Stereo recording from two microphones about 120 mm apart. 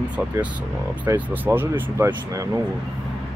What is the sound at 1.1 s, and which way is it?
Speech, 20° right (ahead or behind).